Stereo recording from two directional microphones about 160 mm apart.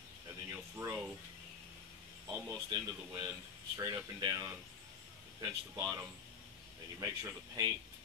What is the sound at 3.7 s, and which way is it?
Speech, 20° right (ahead or behind).